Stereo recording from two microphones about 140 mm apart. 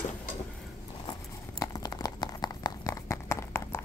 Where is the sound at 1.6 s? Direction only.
25° left (ahead or behind).